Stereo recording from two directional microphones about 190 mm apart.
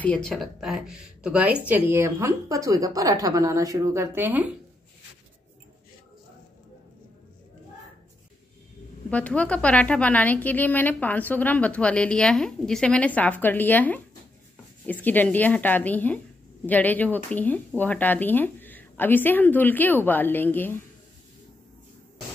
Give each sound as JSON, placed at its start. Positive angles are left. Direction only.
{"t": 0.0, "sound": "a woman's voice", "side_deg": 5}
{"t": 9.1, "sound": "a woman's voice", "side_deg": 5}